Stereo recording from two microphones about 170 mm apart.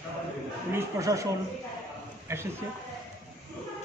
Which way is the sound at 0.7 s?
20° right (ahead or behind).